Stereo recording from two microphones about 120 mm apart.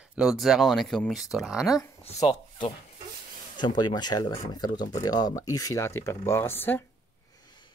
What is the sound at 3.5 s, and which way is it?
Speech, 40° left (ahead or behind).